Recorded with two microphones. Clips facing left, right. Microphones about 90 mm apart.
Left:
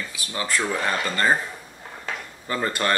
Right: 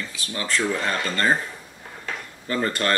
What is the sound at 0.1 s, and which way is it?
Speech, 15° left (ahead or behind).